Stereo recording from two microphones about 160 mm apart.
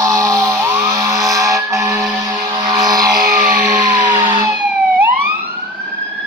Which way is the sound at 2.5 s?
25° right (ahead or behind).